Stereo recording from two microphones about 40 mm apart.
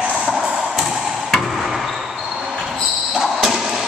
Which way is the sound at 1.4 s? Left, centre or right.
Centre.